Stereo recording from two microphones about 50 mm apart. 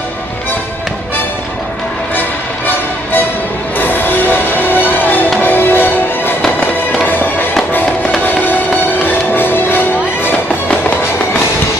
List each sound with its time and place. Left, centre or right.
2.1 s music: left